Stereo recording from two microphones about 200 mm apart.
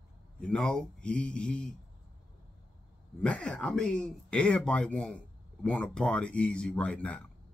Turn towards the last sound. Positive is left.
turn(degrees=5)  # may be behind; listen again after turning